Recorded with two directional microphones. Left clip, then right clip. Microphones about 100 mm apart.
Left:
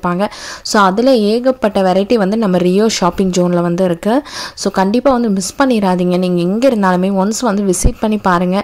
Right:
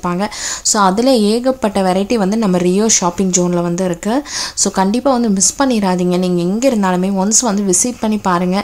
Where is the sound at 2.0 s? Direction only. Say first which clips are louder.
Left 3 dB; 30° left (ahead or behind).